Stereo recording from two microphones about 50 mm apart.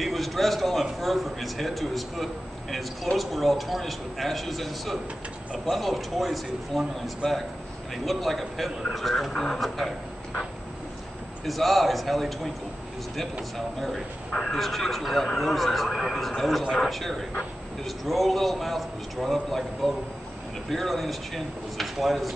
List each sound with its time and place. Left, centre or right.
0.0 s a man's voice: centre
7.9 s speech: centre
11.4 s speech: centre
14.3 s speech: centre
14.6 s speech: centre